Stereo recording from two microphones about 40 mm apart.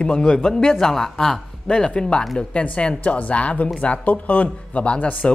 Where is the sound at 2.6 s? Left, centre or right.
Left.